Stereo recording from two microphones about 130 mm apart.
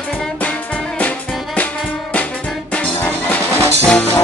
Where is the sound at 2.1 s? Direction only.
10° left (ahead or behind).